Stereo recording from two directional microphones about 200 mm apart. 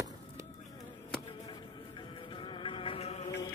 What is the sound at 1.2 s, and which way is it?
Music, 25° left (ahead or behind).